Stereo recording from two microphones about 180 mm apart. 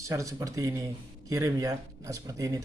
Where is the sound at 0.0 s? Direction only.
15° right (ahead or behind).